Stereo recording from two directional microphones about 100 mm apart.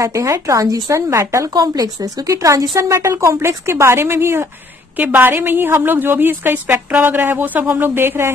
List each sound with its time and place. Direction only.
0.0 s speech: 30° right (ahead or behind)
1.5 s a woman's voice: 40° right (ahead or behind); by 8.3 s 25° right (ahead or behind)